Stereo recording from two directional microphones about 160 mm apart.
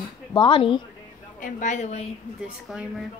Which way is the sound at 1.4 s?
50° left (ahead or behind).